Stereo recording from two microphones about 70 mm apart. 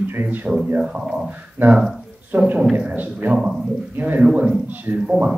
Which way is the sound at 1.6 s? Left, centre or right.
Right.